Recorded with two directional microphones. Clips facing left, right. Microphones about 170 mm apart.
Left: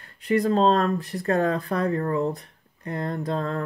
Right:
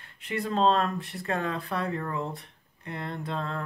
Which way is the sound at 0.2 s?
40° left (ahead or behind).